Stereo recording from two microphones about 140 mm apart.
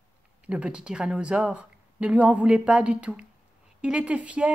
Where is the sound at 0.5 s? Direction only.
5° right (ahead or behind).